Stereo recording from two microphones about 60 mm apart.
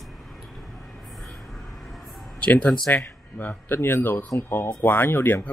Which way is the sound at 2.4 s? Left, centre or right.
Centre.